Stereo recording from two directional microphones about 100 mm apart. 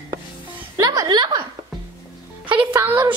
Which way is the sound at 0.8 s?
40° right (ahead or behind).